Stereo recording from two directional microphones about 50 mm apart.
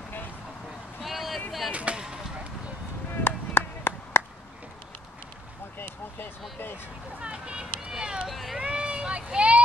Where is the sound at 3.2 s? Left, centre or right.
Left.